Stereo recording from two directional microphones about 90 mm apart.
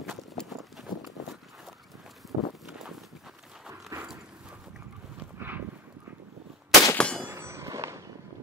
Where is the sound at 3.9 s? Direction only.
30° right (ahead or behind).